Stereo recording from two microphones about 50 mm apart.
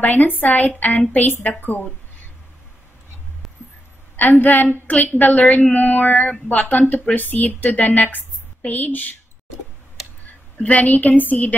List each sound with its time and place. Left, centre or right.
0.0 s speech: left
4.2 s speech: left
10.6 s speech: left